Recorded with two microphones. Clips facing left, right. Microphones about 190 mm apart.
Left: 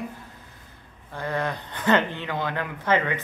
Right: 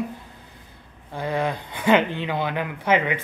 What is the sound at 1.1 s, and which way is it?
Speech, 15° right (ahead or behind).